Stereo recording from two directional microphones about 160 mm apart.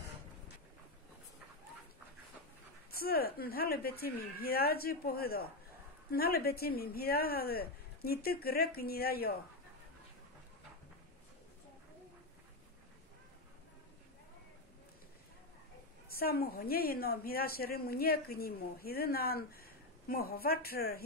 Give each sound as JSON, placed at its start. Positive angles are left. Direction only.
{"t": 2.9, "sound": "a woman's voice", "side_deg": 70}
{"t": 16.1, "sound": "a woman's voice", "side_deg": 70}